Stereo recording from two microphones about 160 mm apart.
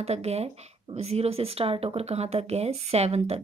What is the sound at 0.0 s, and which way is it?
Speech, 40° right (ahead or behind).